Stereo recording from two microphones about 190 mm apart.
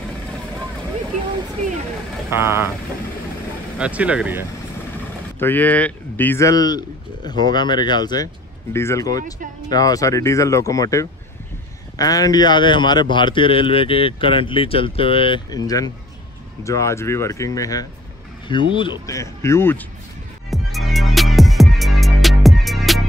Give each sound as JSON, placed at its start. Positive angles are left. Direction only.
{"t": 2.2, "sound": "speech", "side_deg": -10}
{"t": 3.7, "sound": "speech", "side_deg": -5}
{"t": 5.4, "sound": "a man's voice", "side_deg": 10}
{"t": 20.4, "sound": "music", "side_deg": 0}